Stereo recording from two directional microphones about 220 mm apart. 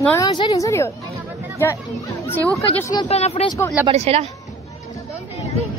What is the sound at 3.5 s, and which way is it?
Speech, 15° left (ahead or behind).